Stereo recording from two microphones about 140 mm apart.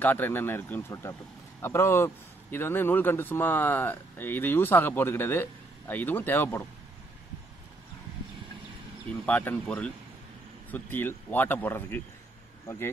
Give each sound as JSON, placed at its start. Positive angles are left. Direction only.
{"t": 0.0, "sound": "speech", "side_deg": 15}
{"t": 9.2, "sound": "speech", "side_deg": 10}